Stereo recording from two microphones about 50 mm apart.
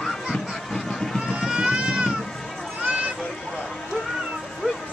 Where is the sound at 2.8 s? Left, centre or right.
Right.